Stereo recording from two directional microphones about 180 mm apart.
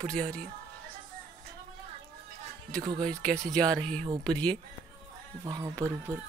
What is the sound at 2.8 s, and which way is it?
Speech, 25° right (ahead or behind).